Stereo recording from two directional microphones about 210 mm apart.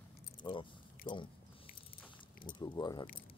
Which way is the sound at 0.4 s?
25° left (ahead or behind).